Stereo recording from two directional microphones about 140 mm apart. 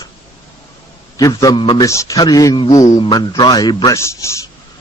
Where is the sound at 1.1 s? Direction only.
25° left (ahead or behind).